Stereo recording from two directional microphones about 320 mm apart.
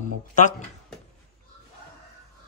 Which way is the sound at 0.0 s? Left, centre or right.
Left.